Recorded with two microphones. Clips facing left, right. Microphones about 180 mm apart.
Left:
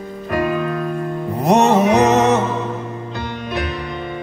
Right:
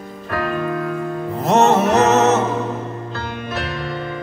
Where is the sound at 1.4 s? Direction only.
15° left (ahead or behind).